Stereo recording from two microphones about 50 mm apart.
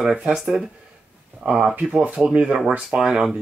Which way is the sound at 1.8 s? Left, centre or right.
Right.